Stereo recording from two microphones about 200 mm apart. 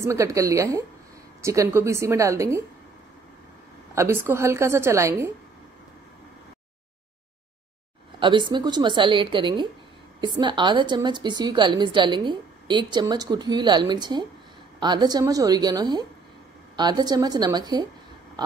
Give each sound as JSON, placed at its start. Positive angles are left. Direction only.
{"t": 0.0, "sound": "a woman's voice", "side_deg": -15}
{"t": 3.9, "sound": "a woman's voice", "side_deg": -15}
{"t": 8.2, "sound": "a woman's voice", "side_deg": -25}